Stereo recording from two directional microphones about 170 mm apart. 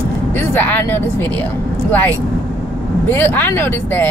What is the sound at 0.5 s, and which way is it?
Speech, 10° left (ahead or behind).